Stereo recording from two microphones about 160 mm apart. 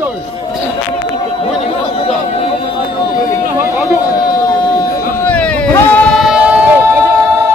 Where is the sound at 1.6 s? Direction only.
40° left (ahead or behind).